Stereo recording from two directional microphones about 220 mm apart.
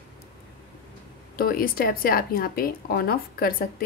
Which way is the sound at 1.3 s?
40° left (ahead or behind).